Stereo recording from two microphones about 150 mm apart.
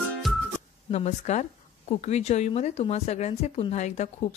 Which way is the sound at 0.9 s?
50° left (ahead or behind).